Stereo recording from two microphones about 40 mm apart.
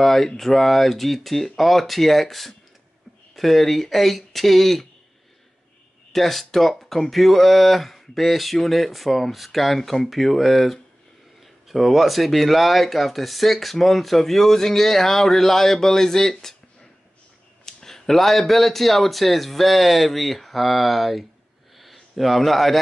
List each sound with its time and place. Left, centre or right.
0.0 s speech: centre
6.1 s speech: centre
17.6 s speech: centre
21.7 s a sound: centre